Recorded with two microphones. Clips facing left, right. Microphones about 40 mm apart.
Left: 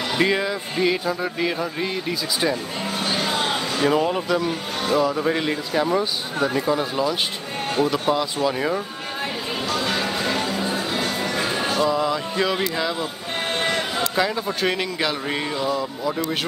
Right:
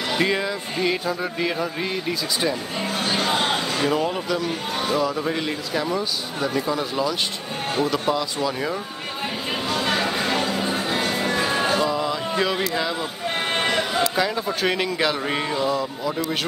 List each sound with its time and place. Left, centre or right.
0.1 s speech: centre
3.8 s speech: centre
9.7 s music: centre
11.9 s music: centre
13.5 s speech: centre